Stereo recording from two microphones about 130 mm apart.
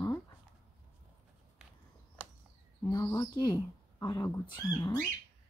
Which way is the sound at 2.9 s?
30° left (ahead or behind).